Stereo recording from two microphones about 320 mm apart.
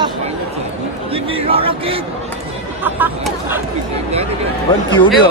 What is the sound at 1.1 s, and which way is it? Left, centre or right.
Speech, centre.